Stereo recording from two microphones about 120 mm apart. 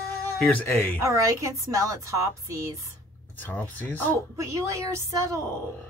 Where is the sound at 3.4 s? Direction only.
15° left (ahead or behind).